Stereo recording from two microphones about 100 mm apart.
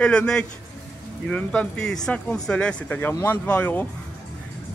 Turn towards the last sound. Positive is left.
turn(degrees=15)  # may be behind; listen again after turning